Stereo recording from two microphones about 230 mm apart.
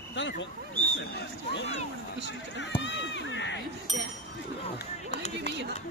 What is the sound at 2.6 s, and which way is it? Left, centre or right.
Run, left.